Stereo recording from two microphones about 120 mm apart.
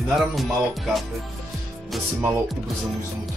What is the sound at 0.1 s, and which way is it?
Speech, centre (ahead or behind).